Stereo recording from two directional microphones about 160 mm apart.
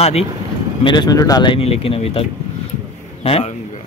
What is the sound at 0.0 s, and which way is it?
Speech, 40° left (ahead or behind).